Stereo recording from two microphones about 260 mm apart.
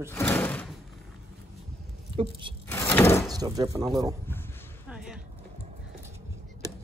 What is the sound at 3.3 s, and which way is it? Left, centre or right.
Speech, centre.